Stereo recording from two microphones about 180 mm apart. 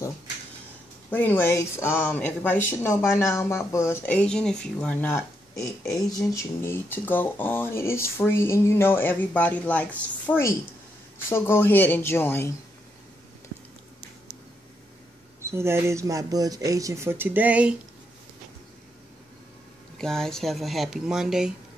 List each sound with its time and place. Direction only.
1.1 s speech: 10° left (ahead or behind)
15.4 s speech: 15° right (ahead or behind)
20.0 s speech: 5° left (ahead or behind)